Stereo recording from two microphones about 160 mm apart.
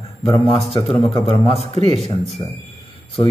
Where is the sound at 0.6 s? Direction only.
40° left (ahead or behind).